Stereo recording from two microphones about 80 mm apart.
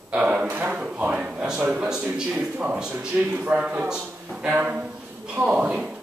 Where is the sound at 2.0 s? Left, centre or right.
Centre.